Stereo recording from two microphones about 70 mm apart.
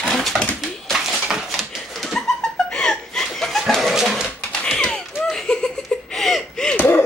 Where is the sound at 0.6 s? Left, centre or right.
Centre.